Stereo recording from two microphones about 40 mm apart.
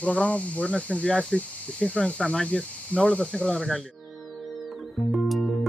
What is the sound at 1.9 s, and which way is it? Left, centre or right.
Speech, centre.